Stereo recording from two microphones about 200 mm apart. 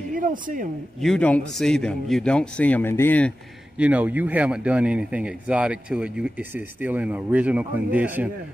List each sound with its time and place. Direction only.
0.1 s speech: 45° right (ahead or behind)
1.0 s speech: 5° left (ahead or behind)
3.7 s speech: 5° right (ahead or behind)